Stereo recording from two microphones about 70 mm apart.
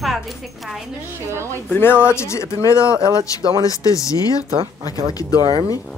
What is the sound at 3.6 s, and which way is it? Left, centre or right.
Speech, left.